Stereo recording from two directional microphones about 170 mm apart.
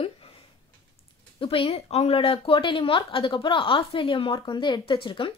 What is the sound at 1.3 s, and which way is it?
Speech, 30° left (ahead or behind).